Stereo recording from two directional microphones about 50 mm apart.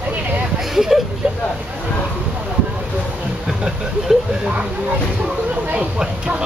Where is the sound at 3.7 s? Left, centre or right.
Centre.